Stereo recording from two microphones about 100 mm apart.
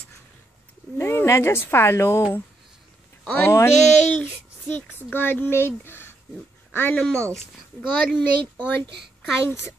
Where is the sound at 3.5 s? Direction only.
30° left (ahead or behind).